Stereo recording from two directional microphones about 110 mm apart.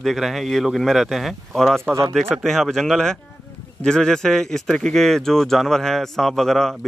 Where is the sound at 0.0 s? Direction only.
Centre (ahead or behind).